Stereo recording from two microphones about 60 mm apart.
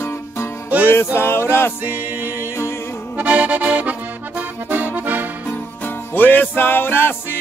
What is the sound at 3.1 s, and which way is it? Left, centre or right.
Accordion, right.